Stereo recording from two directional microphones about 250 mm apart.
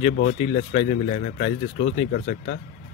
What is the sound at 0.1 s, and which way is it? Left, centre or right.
A man's voice, left.